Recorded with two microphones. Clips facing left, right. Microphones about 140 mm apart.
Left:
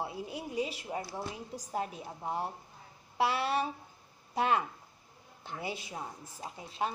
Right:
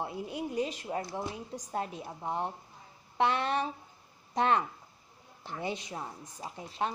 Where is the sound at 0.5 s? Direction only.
10° left (ahead or behind).